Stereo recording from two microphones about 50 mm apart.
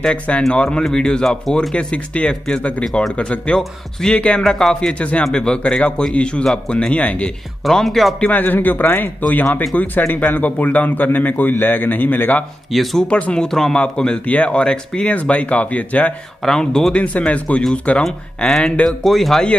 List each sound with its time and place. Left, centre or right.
0.5 s speech: centre
4.4 s speech: centre
4.9 s speech: left
7.7 s speech: centre
8.3 s a man's voice: left
12.7 s speech: centre
13.1 s speech: left
13.5 s speech: centre; by 16.1 s left
16.4 s speech: centre
16.9 s speech: left
18.0 s speech: centre
18.6 s speech: centre
18.9 s speech: centre